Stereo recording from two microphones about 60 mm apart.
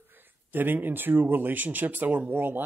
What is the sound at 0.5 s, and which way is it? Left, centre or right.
Speech, right.